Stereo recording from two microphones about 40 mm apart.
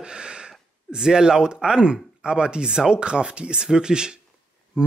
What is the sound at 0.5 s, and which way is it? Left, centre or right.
Speech, centre.